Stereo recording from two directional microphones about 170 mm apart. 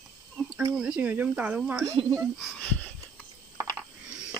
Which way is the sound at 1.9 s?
20° right (ahead or behind).